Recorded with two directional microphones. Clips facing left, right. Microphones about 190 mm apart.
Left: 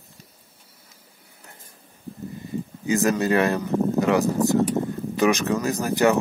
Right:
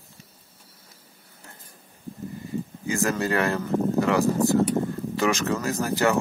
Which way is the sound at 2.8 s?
20° left (ahead or behind).